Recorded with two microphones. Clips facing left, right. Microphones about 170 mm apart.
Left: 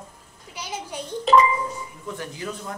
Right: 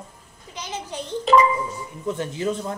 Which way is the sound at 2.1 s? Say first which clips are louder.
Right 8 dB; 25° right (ahead or behind).